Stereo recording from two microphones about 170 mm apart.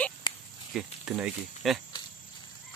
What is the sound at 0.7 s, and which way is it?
Speech, 5° right (ahead or behind).